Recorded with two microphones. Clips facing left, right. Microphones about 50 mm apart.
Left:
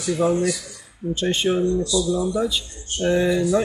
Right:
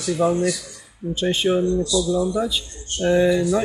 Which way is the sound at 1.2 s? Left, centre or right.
Centre.